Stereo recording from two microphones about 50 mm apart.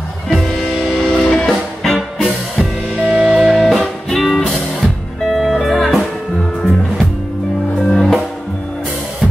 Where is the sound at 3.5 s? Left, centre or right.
Centre.